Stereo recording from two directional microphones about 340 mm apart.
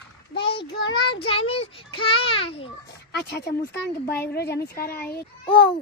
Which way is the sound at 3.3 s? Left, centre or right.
Left.